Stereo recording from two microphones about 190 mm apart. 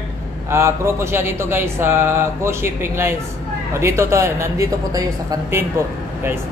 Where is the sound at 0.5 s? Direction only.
15° right (ahead or behind).